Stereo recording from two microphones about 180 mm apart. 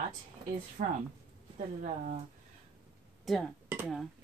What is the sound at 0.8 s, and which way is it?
Speech, 45° right (ahead or behind).